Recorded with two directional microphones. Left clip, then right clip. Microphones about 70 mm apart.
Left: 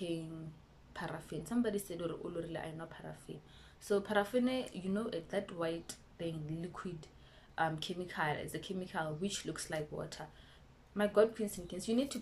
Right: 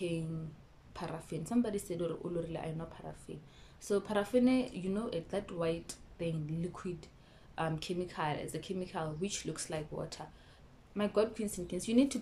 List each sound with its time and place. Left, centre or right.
0.9 s speech: right